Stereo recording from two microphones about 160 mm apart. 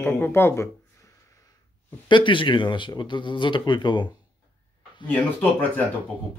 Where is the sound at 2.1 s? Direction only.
30° left (ahead or behind).